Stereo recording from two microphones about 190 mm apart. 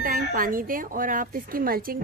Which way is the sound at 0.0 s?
45° right (ahead or behind).